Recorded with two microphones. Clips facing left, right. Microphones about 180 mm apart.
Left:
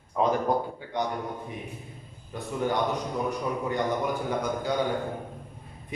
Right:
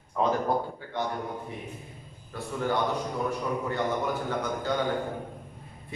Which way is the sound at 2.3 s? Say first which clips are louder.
Left 1 dB; 20° left (ahead or behind).